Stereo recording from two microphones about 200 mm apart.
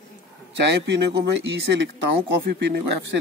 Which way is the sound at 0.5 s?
60° right (ahead or behind).